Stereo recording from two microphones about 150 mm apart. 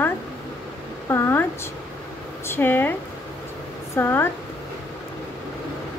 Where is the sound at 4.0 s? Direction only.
15° left (ahead or behind).